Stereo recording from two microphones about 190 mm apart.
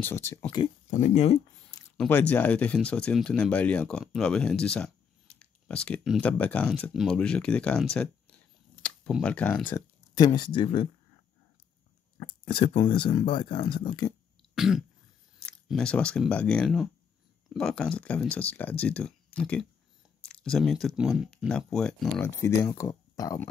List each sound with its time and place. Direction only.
0.0 s speech: 15° left (ahead or behind)
0.8 s speech: 40° left (ahead or behind)
2.0 s speech: 10° left (ahead or behind)
10.1 s speech: 20° left (ahead or behind)
12.4 s speech: 25° left (ahead or behind)
14.5 s throat clearing: centre (ahead or behind)
15.4 s speech: 5° left (ahead or behind)
22.1 s speech: 15° left (ahead or behind)